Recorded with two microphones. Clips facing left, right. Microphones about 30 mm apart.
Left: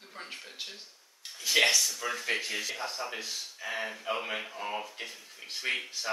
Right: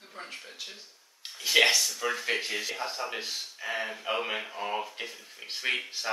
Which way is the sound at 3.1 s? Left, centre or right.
Right.